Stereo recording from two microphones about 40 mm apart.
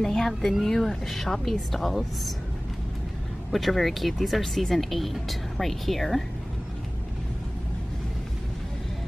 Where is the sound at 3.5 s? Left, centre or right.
Centre.